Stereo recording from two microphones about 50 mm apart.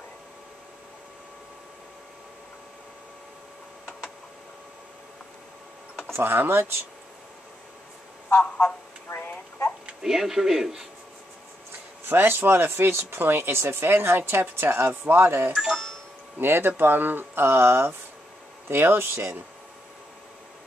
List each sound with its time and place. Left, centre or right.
6.1 s speech: right
8.3 s a sound: left
10.0 s a man's voice: centre
12.1 s speech: right